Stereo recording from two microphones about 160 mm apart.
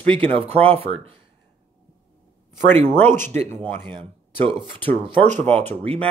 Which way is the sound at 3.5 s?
15° left (ahead or behind).